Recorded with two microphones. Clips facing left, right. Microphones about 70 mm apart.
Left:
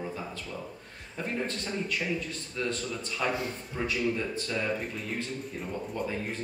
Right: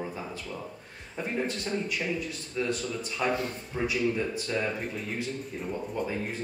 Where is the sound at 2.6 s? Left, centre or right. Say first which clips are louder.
Right 2 dB; centre.